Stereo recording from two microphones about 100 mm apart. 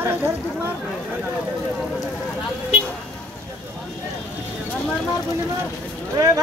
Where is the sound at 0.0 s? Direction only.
25° right (ahead or behind).